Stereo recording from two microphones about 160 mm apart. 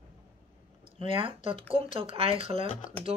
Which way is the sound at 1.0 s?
35° right (ahead or behind).